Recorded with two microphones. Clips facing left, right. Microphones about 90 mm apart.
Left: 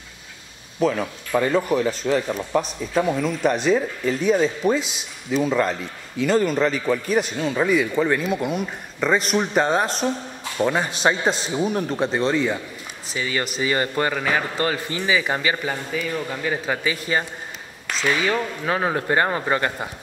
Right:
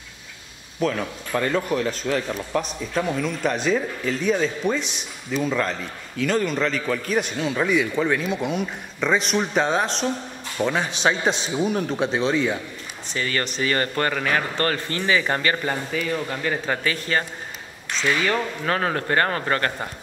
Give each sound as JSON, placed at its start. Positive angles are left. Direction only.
{"t": 0.7, "sound": "a man's voice", "side_deg": 5}